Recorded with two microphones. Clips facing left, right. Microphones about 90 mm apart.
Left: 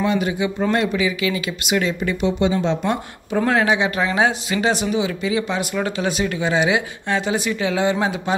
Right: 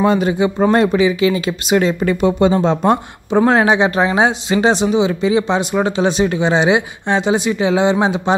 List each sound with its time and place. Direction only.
0.0 s speech: 35° right (ahead or behind)
2.0 s speech: 50° right (ahead or behind)
3.3 s speech: 30° right (ahead or behind)